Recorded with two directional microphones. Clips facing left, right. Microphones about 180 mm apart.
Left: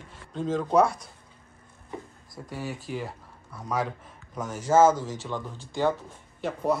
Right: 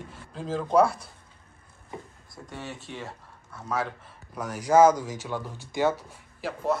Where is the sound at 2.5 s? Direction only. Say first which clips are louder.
Left 5 dB; centre (ahead or behind).